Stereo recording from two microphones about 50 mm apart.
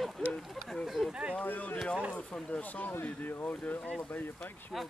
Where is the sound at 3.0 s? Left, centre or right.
Left.